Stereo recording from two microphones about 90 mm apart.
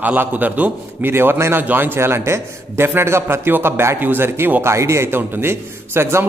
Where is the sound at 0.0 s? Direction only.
20° right (ahead or behind).